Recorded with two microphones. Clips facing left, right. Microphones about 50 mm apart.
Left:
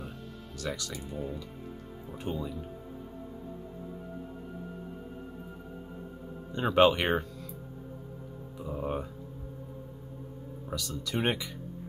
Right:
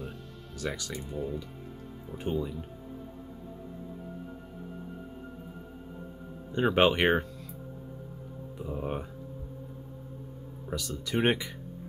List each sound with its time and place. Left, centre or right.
0.6 s speech: right
0.9 s speech: centre
2.1 s speech: centre
6.5 s speech: centre
8.5 s speech: centre
10.7 s speech: right